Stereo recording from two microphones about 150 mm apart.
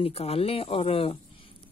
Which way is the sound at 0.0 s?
40° left (ahead or behind).